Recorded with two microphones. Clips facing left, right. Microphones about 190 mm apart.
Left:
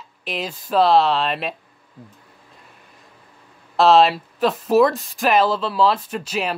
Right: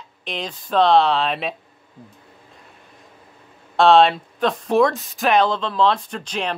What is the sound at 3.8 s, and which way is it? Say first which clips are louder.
Speech: even; centre (ahead or behind).